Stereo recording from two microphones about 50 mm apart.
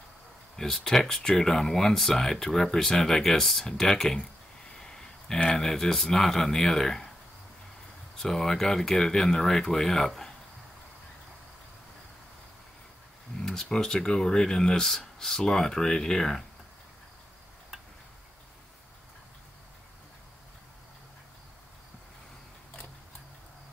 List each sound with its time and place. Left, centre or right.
0.6 s speech: centre
4.7 s a sound: centre
5.6 s speech: centre
8.2 s speech: centre
13.4 s speech: centre